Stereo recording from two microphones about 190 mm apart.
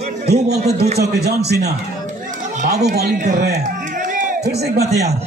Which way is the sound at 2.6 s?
55° right (ahead or behind).